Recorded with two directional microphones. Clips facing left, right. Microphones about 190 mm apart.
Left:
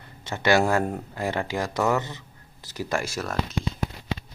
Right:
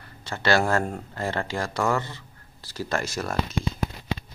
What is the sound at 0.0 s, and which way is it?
Speech, 20° left (ahead or behind).